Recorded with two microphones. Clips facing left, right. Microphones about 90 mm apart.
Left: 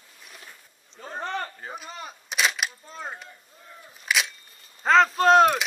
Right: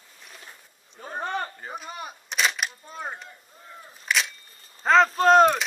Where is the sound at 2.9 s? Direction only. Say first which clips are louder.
Right 2 dB; 10° right (ahead or behind).